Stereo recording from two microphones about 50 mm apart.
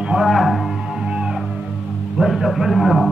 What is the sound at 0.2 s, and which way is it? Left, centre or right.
Music, centre.